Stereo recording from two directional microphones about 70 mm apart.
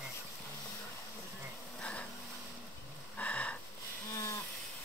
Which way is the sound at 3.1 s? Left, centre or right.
Centre.